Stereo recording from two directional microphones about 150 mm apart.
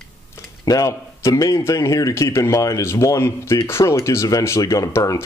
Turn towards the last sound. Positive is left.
turn(degrees=20)  # may be behind; listen again after turning